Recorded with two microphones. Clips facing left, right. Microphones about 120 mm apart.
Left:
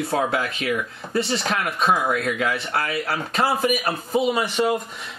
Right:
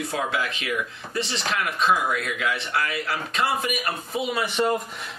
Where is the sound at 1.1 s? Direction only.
50° left (ahead or behind).